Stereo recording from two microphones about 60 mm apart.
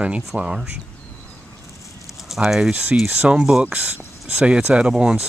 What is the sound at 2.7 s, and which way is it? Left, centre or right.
Speech, right.